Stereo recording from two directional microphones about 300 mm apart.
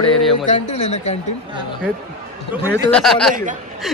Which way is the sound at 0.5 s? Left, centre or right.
Left.